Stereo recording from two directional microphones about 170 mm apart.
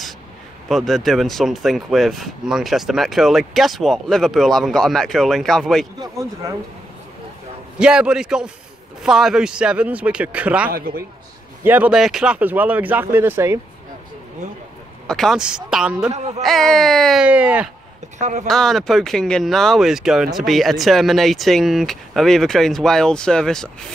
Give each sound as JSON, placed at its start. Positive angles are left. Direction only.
{"t": 0.7, "sound": "speech", "side_deg": 0}
{"t": 5.9, "sound": "speech", "side_deg": -20}
{"t": 7.8, "sound": "speech", "side_deg": -5}
{"t": 15.0, "sound": "speech", "side_deg": 0}
{"t": 16.1, "sound": "speech", "side_deg": -40}
{"t": 16.4, "sound": "speech", "side_deg": 0}
{"t": 18.2, "sound": "speech", "side_deg": -45}
{"t": 18.5, "sound": "speech", "side_deg": 0}